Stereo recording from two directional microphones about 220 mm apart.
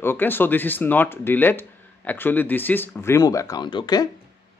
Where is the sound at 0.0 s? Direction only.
10° left (ahead or behind).